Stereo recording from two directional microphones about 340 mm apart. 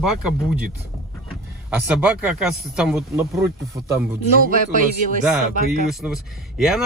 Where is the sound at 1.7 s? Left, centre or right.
Centre.